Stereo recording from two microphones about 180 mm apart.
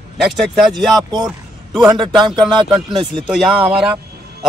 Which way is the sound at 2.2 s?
25° right (ahead or behind).